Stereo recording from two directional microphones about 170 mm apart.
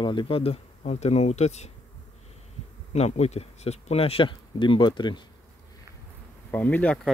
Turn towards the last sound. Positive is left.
turn(degrees=5)  # may be behind; listen again after turning